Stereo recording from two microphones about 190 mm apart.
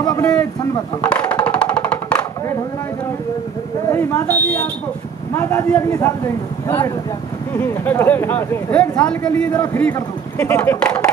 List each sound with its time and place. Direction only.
0.0 s a sound: 20° left (ahead or behind)
1.0 s music: 5° left (ahead or behind)
3.9 s speech: 10° left (ahead or behind)
7.5 s speech: 10° left (ahead or behind)